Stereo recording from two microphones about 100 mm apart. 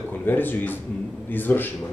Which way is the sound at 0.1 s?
20° left (ahead or behind).